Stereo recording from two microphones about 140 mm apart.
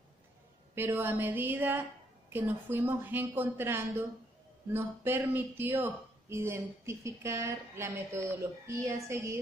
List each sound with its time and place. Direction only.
0.7 s a woman's voice: 15° right (ahead or behind)